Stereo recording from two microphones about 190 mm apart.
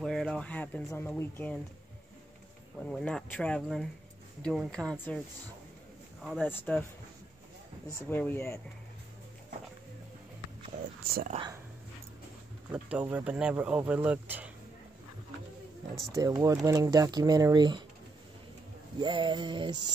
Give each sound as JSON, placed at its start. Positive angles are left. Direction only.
{"t": 0.0, "sound": "speech", "side_deg": 0}
{"t": 2.8, "sound": "speech", "side_deg": 5}
{"t": 6.2, "sound": "speech", "side_deg": 0}
{"t": 8.1, "sound": "speech", "side_deg": 10}
{"t": 11.1, "sound": "speech", "side_deg": -50}
{"t": 12.7, "sound": "speech", "side_deg": -10}
{"t": 16.1, "sound": "speech", "side_deg": -15}
{"t": 18.9, "sound": "music", "side_deg": -25}